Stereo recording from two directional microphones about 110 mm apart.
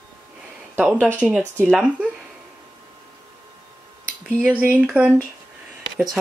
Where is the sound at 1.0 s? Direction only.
15° left (ahead or behind).